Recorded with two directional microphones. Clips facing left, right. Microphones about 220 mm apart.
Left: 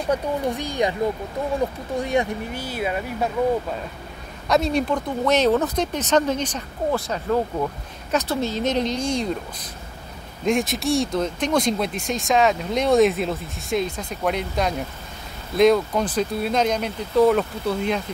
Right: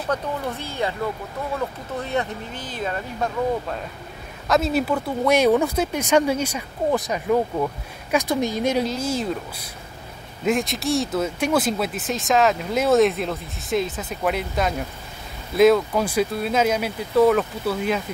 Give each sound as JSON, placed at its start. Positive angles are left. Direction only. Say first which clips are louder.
{"t": 0.1, "sound": "speech", "louder": "left 3 dB", "side_deg": 15}
{"t": 4.5, "sound": "speech", "louder": "even", "side_deg": -5}